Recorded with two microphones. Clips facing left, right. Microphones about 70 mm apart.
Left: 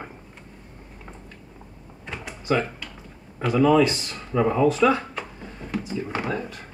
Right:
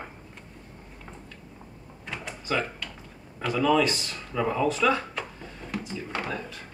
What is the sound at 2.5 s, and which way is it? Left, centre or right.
Speech, centre.